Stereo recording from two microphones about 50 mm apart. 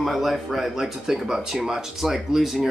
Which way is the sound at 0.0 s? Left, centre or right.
Centre.